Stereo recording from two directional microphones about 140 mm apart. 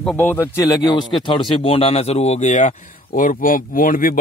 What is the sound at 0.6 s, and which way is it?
A man's voice, 25° left (ahead or behind).